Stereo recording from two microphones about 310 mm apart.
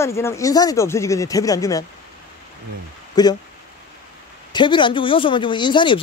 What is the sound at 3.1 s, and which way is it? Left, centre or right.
Speech, centre.